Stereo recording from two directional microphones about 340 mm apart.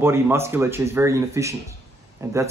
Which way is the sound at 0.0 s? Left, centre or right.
Centre.